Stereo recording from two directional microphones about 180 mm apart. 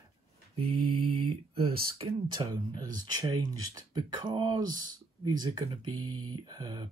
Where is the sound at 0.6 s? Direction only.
35° right (ahead or behind).